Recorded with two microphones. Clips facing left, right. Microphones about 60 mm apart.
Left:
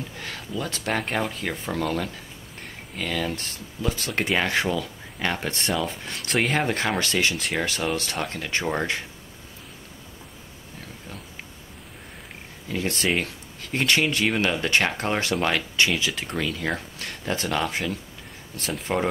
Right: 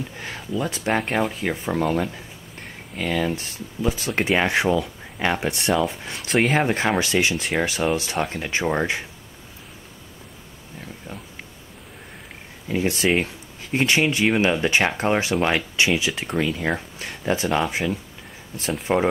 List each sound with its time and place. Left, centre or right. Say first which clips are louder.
0.2 s speech: right 5 dB; centre
7.3 s speech: right 3 dB; centre
7.6 s speech: right 4 dB; centre
12.6 s speech: right 4 dB; centre
18.6 s speech: right 5 dB; centre